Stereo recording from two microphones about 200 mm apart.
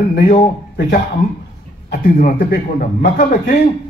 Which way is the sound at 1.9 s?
50° left (ahead or behind).